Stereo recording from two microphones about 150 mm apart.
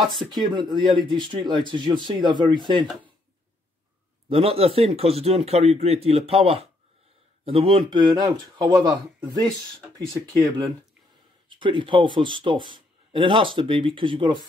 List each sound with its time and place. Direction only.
0.3 s speech: 30° right (ahead or behind)
4.3 s speech: 40° right (ahead or behind)
10.2 s a man's voice: 25° right (ahead or behind)